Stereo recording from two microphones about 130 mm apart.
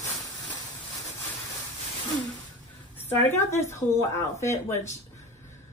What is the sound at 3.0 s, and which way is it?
Speech, 20° left (ahead or behind).